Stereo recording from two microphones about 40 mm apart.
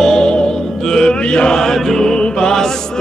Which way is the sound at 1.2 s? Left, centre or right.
Left.